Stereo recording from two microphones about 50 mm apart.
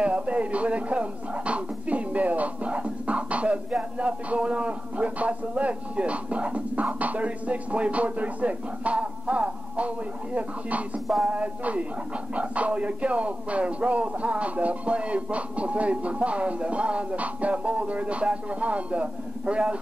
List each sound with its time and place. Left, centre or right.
0.0 s speech: right